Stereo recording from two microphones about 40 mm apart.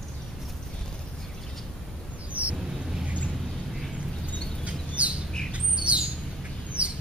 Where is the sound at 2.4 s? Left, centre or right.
Right.